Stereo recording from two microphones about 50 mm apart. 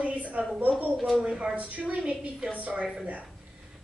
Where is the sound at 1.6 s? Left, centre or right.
Right.